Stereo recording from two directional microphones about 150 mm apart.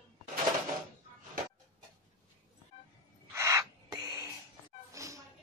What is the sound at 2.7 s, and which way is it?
Music, 40° left (ahead or behind).